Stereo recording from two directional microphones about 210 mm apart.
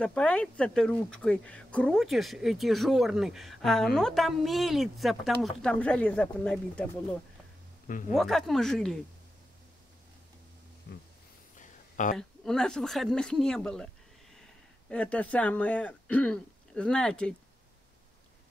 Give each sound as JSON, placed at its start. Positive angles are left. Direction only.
{"t": 0.0, "sound": "speech", "side_deg": 5}
{"t": 8.1, "sound": "speech", "side_deg": 0}
{"t": 10.9, "sound": "speech", "side_deg": 45}
{"t": 11.5, "sound": "a sound", "side_deg": 35}
{"t": 12.2, "sound": "speech", "side_deg": 5}
{"t": 14.9, "sound": "speech", "side_deg": 5}